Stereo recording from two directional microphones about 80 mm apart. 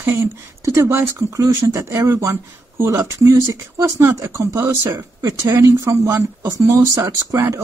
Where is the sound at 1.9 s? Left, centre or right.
Right.